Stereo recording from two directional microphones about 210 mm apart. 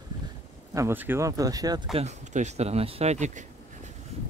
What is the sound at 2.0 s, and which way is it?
Speech, 35° right (ahead or behind).